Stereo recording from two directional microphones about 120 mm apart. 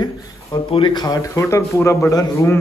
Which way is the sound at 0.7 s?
45° left (ahead or behind).